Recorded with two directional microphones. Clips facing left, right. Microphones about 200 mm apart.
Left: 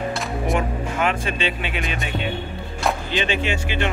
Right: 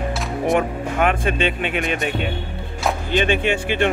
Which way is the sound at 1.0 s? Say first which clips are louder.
Right 4 dB; 50° right (ahead or behind).